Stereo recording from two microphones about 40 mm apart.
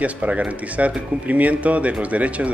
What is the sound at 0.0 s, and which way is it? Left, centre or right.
Speech, right.